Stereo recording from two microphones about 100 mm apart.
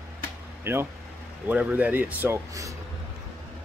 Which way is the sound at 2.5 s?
30° right (ahead or behind).